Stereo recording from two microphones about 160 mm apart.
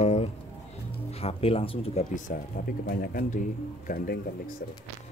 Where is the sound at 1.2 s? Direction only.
35° left (ahead or behind).